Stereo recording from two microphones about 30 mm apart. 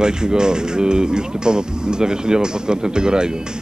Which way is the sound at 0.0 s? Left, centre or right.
Right.